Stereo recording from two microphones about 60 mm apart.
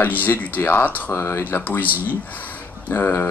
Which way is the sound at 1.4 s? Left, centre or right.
Left.